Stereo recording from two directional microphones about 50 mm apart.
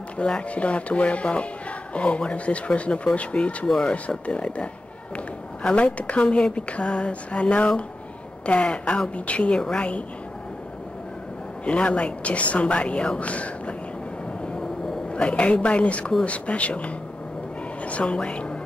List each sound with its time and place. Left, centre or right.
0.2 s a woman's voice: left
3.6 s speech: centre
4.1 s a woman's voice: left
11.6 s a woman's voice: left
15.0 s a woman's voice: left